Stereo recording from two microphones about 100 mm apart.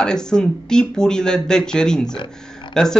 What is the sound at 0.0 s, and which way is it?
Speech, 10° left (ahead or behind).